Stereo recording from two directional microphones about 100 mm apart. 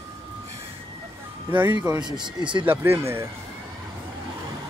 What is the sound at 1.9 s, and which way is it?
Speech, 45° right (ahead or behind).